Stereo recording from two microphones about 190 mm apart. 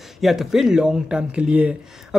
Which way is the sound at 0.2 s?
Centre (ahead or behind).